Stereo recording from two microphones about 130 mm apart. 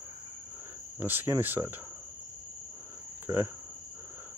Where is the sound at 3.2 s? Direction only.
15° right (ahead or behind).